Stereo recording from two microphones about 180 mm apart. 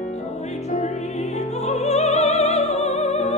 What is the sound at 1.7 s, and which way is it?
Opera, 40° left (ahead or behind).